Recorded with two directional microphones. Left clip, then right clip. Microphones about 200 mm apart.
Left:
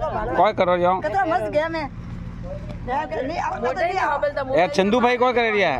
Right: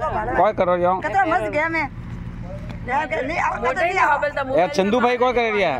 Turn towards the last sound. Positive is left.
turn(degrees=0)  # may be behind; listen again after turning